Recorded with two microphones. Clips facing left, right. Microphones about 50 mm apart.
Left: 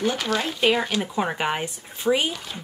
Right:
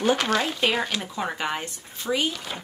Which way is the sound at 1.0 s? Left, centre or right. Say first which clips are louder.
Left 4 dB; centre.